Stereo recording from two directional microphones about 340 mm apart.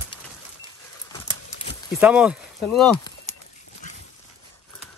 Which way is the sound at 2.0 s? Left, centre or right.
Centre.